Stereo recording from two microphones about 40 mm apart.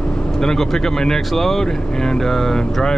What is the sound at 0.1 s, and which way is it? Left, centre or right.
Speech, centre.